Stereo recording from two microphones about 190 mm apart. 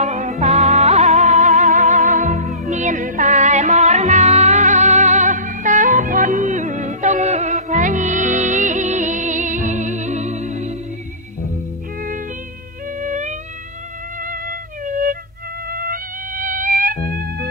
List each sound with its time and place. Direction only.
0.0 s music: 35° right (ahead or behind)
13.0 s music: 40° right (ahead or behind)